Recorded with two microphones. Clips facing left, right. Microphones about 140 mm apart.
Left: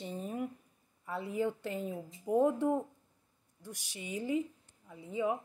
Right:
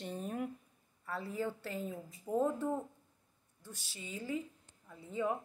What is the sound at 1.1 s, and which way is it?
Speech, 15° left (ahead or behind).